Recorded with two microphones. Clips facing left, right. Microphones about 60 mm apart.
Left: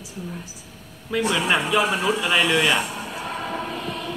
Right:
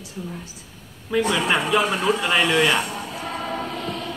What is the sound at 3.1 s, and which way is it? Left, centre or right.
Music, right.